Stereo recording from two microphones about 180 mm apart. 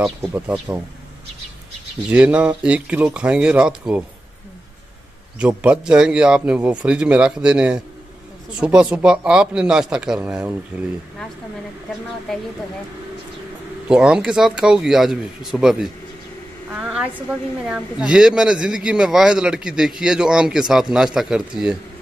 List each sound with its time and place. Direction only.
0.0 s speech: 5° right (ahead or behind)
2.0 s speech: 5° right (ahead or behind)
5.4 s a man's voice: 5° right (ahead or behind)
13.8 s a man's voice: 5° right (ahead or behind)